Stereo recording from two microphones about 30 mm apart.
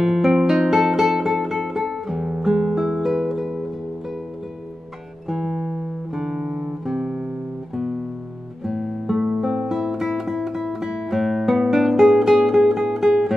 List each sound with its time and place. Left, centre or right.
0.0 s music: centre
5.3 s guitar: centre
6.9 s guitar: centre
8.6 s guitar: centre
9.3 s music: centre